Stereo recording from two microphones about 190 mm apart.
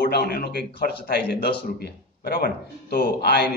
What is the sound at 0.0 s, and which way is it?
A man's voice, 55° left (ahead or behind).